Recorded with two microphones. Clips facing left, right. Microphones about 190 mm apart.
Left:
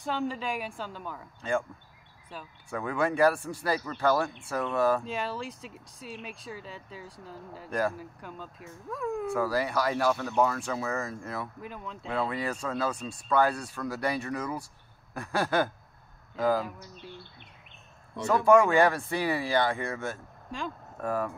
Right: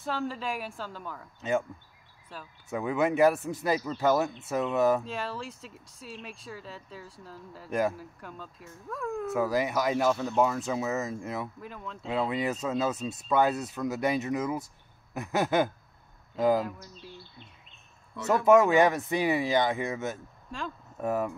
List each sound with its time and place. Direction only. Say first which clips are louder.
0.0 s speech: left 1 dB; centre (ahead or behind)
1.4 s speech: right 1 dB; 20° right (ahead or behind)
2.3 s speech: left 1 dB; centre (ahead or behind)
2.7 s speech: right 2 dB; 20° right (ahead or behind)
5.0 s speech: left 2 dB; centre (ahead or behind)
9.3 s speech: right 3 dB; 20° right (ahead or behind)
11.6 s speech: left 1 dB; centre (ahead or behind)
12.1 s speech: right 2 dB; 20° right (ahead or behind)
18.7 s speech: right 1 dB; 20° right (ahead or behind)